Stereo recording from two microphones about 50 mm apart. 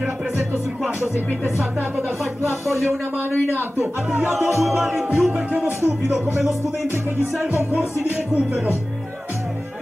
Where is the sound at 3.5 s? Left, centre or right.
Right.